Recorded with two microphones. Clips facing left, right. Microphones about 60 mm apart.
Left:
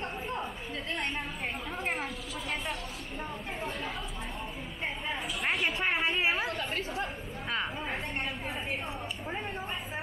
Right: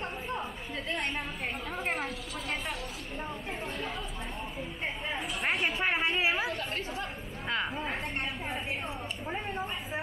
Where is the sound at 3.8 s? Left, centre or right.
Left.